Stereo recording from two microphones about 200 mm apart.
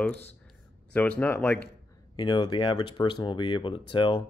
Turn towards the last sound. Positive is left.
turn(degrees=25)  # may be behind; listen again after turning